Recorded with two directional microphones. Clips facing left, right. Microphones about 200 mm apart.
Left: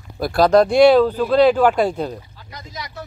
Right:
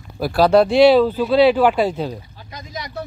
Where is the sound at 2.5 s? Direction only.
25° right (ahead or behind).